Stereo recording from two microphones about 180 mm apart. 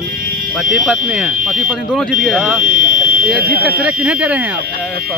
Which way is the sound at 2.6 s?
50° right (ahead or behind).